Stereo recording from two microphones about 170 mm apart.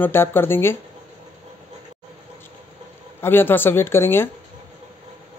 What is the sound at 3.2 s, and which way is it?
A man's voice, 15° left (ahead or behind).